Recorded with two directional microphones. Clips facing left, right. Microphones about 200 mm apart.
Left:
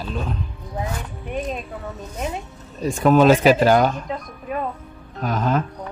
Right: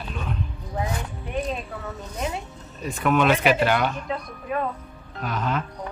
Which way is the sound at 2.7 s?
40° left (ahead or behind).